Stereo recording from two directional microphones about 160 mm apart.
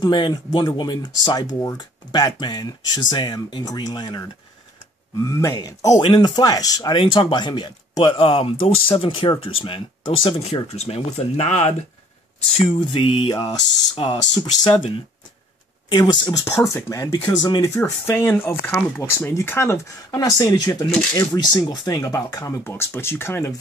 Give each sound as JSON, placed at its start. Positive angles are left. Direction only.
{"t": 0.0, "sound": "speech", "side_deg": 25}
{"t": 12.6, "sound": "speech", "side_deg": 30}
{"t": 15.9, "sound": "speech", "side_deg": 25}